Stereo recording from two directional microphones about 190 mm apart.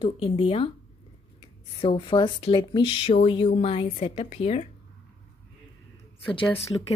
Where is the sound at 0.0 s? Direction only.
25° left (ahead or behind).